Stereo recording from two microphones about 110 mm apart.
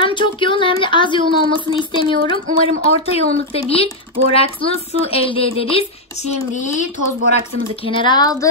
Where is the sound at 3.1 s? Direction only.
65° left (ahead or behind).